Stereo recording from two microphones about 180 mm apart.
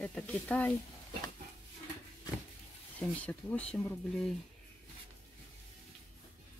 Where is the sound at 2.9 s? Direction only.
5° left (ahead or behind).